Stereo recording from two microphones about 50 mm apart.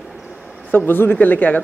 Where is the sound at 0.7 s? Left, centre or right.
Left.